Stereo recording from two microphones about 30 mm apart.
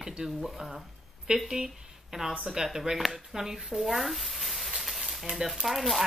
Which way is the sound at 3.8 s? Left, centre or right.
Centre.